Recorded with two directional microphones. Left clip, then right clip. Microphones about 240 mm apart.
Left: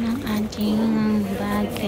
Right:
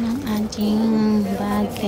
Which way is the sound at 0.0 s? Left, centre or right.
Centre.